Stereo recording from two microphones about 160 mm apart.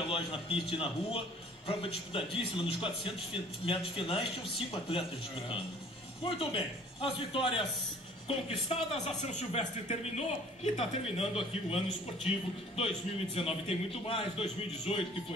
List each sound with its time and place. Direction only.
0.1 s speech: 35° left (ahead or behind)
6.2 s speech: 35° left (ahead or behind)